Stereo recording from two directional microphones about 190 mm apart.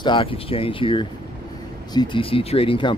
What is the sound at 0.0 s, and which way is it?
Speech, 25° left (ahead or behind).